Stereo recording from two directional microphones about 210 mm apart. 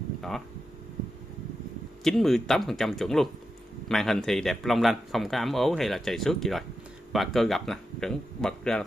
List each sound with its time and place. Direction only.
2.0 s speech: centre (ahead or behind)